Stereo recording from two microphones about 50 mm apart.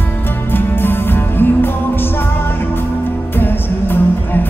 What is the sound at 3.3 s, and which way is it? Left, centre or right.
Music, left.